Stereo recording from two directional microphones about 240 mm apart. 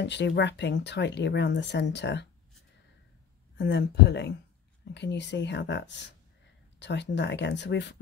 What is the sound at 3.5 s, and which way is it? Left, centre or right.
Speech, left.